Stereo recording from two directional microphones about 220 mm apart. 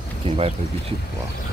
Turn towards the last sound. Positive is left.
turn(degrees=-25)  # may be behind; listen again after turning